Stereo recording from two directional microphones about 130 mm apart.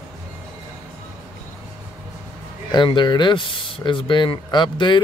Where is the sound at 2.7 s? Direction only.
35° left (ahead or behind).